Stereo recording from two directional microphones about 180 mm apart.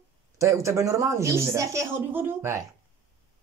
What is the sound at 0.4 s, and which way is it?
Speech, 15° right (ahead or behind).